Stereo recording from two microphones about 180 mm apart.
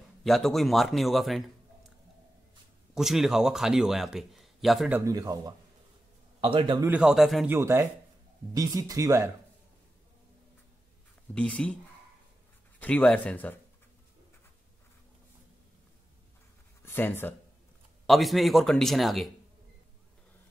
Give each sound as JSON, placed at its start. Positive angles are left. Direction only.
{"t": 0.2, "sound": "a man's voice", "side_deg": 0}
{"t": 2.9, "sound": "a man's voice", "side_deg": 0}
{"t": 4.9, "sound": "speech", "side_deg": -20}
{"t": 6.9, "sound": "a man's voice", "side_deg": -5}
{"t": 7.4, "sound": "speech", "side_deg": -15}
{"t": 11.3, "sound": "speech", "side_deg": 5}
{"t": 12.7, "sound": "speech", "side_deg": 10}
{"t": 16.8, "sound": "speech", "side_deg": 10}
{"t": 18.0, "sound": "a man's voice", "side_deg": 0}